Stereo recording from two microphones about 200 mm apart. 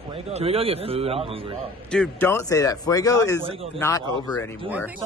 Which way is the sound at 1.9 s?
5° left (ahead or behind).